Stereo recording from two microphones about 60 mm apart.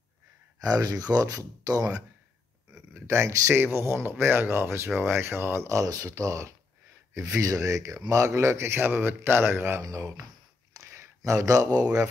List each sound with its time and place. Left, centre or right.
0.6 s speech: right
2.9 s speech: right
10.9 s a sound: right
11.3 s speech: right